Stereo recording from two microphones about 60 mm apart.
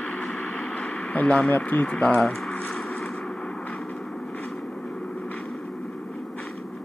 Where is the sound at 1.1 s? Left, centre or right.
Left.